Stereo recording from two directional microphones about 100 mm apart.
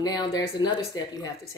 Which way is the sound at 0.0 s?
40° left (ahead or behind).